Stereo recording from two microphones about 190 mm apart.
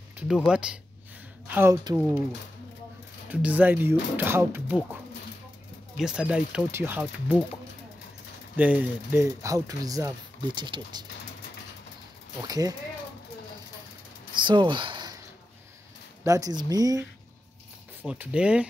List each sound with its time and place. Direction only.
0.3 s speech: 5° right (ahead or behind)
3.3 s speech: 10° right (ahead or behind)
5.9 s speech: 5° right (ahead or behind)
8.5 s speech: 10° right (ahead or behind)
12.4 s speech: 20° right (ahead or behind)
14.4 s a sound: 25° right (ahead or behind)
16.3 s speech: 15° right (ahead or behind)
18.0 s speech: 5° right (ahead or behind)